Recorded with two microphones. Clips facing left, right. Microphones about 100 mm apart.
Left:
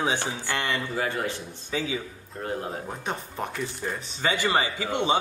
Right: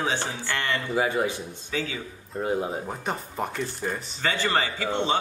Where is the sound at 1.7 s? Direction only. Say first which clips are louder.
Left 2 dB; 15° left (ahead or behind).